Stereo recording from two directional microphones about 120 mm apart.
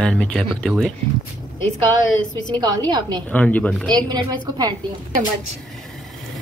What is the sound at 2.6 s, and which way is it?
Speech, 35° right (ahead or behind).